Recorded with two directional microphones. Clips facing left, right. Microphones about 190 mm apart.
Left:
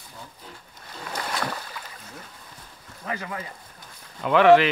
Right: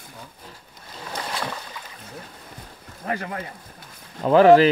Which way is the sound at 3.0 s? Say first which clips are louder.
Right 4 dB; 45° right (ahead or behind).